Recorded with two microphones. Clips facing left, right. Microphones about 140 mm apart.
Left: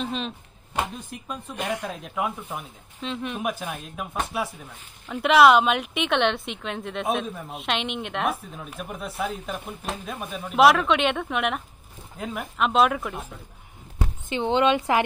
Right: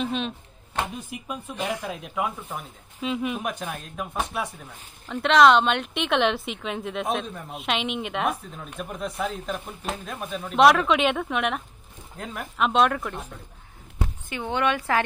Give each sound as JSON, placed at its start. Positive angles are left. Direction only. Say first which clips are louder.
{"t": 0.0, "sound": "speech", "louder": "right 2 dB", "side_deg": 0}
{"t": 14.3, "sound": "a woman's voice", "louder": "left 5 dB", "side_deg": 20}